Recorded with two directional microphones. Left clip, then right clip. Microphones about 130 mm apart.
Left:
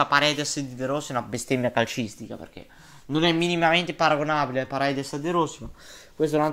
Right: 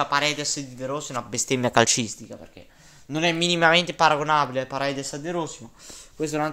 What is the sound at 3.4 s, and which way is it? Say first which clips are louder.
Speech: right 3 dB; 35° right (ahead or behind).